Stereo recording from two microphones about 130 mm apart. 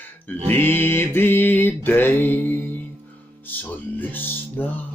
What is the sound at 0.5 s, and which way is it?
Mantra, 15° left (ahead or behind).